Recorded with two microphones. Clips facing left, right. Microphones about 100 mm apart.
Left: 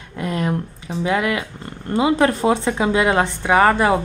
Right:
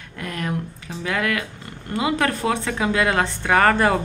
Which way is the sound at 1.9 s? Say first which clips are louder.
Left 5 dB; 30° left (ahead or behind).